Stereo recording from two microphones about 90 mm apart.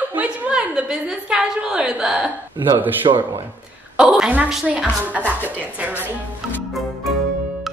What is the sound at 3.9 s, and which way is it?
A woman's voice, 5° right (ahead or behind).